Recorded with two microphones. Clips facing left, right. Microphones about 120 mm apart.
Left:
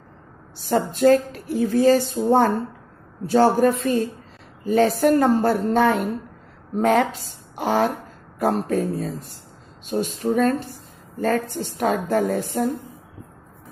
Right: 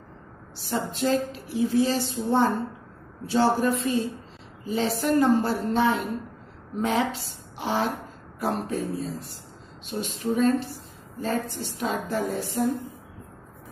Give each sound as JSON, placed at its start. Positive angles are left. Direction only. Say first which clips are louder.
{"t": 0.7, "sound": "a woman's voice", "louder": "left 9 dB", "side_deg": 50}